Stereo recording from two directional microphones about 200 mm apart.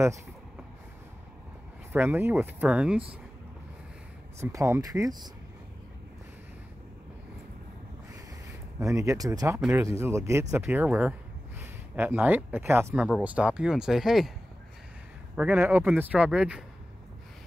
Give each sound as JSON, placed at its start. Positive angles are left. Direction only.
{"t": 1.9, "sound": "speech", "side_deg": -10}
{"t": 4.4, "sound": "speech", "side_deg": -15}
{"t": 8.5, "sound": "speech", "side_deg": -15}
{"t": 15.3, "sound": "a man's voice", "side_deg": -5}